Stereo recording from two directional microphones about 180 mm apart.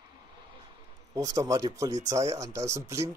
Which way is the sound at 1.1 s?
20° right (ahead or behind).